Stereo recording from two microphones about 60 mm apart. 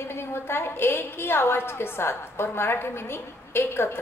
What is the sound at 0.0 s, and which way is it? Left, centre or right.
A woman's voice, left.